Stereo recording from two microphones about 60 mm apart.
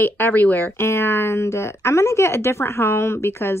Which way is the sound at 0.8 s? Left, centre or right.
Left.